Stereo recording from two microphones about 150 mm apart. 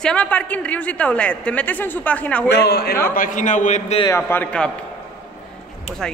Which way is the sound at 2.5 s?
90° left.